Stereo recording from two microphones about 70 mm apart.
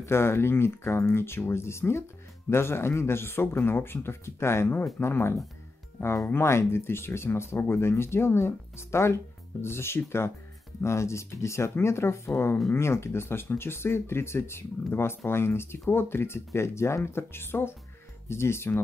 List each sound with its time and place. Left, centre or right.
0.0 s speech: left